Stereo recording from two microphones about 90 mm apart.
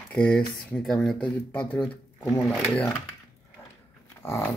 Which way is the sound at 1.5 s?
20° left (ahead or behind).